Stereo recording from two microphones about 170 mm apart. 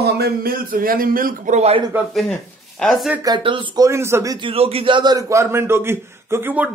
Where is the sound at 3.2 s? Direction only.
30° right (ahead or behind).